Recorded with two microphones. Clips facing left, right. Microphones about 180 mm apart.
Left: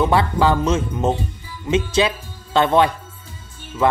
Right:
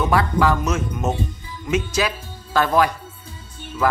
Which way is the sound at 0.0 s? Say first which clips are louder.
Left 2 dB; 30° left (ahead or behind).